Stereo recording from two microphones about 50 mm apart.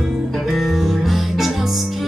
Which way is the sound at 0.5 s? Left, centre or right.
Centre.